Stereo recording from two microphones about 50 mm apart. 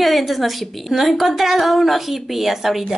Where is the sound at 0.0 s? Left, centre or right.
Centre.